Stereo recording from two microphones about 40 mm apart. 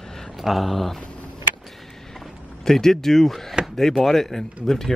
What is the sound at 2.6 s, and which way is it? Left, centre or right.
Speech, centre.